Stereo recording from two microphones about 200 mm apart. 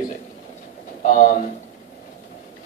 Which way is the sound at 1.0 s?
40° left (ahead or behind).